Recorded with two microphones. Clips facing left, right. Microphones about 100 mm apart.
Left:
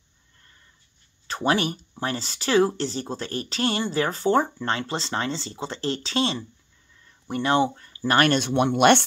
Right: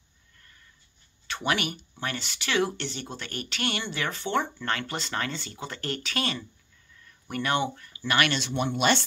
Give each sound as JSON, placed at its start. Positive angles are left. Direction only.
{"t": 1.2, "sound": "speech", "side_deg": 35}